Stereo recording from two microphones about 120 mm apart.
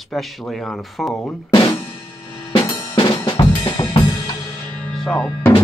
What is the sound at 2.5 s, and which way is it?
Drum kit, 40° left (ahead or behind).